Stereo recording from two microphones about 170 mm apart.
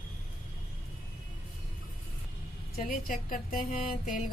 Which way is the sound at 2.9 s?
55° left (ahead or behind).